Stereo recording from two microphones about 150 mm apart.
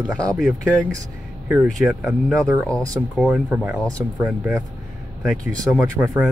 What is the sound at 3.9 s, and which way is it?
Speech, 20° right (ahead or behind).